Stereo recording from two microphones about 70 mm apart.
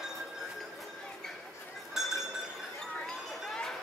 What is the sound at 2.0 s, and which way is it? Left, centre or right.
Chink, centre.